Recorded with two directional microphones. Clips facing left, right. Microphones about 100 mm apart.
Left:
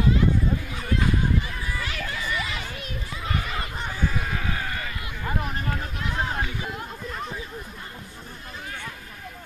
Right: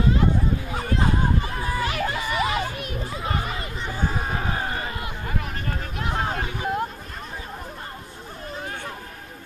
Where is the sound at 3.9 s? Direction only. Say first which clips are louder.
Right 2 dB; 35° right (ahead or behind).